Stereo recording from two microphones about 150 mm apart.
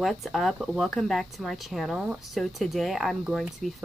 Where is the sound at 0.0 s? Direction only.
Centre (ahead or behind).